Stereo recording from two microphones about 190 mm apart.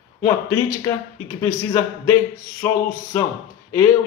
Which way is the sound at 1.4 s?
15° left (ahead or behind).